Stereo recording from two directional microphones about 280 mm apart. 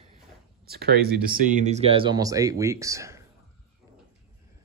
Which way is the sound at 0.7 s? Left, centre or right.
Right.